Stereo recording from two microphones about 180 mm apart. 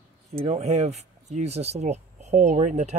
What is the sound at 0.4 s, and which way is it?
Speech, 35° right (ahead or behind).